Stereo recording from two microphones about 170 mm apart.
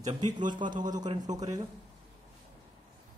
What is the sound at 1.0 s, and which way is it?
Speech, 25° right (ahead or behind).